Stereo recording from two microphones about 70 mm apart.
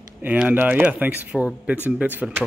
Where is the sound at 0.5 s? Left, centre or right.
Right.